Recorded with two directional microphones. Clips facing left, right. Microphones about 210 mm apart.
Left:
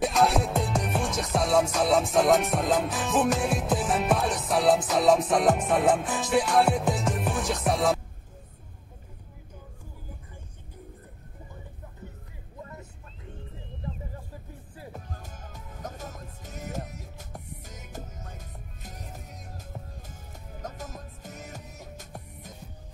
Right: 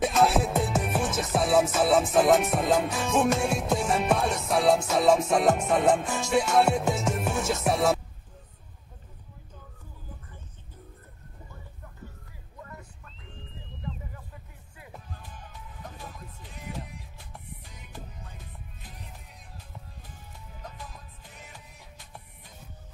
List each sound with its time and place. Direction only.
0.0 s music: centre (ahead or behind)
14.8 s music: 45° left (ahead or behind)